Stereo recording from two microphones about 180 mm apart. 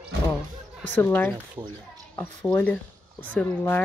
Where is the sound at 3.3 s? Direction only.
10° left (ahead or behind).